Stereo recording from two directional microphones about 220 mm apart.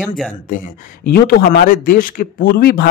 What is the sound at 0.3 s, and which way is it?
Speech, 40° left (ahead or behind).